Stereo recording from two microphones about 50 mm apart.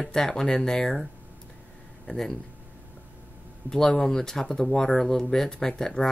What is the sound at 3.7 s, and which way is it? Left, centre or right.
Speech, centre.